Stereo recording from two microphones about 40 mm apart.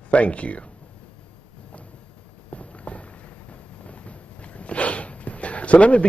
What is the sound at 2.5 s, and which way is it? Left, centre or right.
Walk, left.